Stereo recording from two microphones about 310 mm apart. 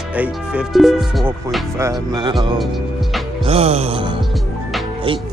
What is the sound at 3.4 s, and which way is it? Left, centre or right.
Music, centre.